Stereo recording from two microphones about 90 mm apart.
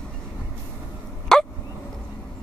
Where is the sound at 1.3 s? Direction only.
5° left (ahead or behind).